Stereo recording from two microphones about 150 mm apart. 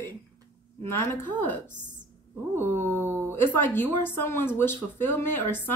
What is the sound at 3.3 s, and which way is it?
Speech, 15° left (ahead or behind).